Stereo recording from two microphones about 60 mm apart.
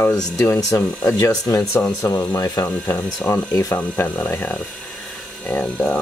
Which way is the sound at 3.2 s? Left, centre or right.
Left.